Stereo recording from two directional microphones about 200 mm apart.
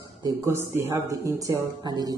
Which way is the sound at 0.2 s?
15° right (ahead or behind).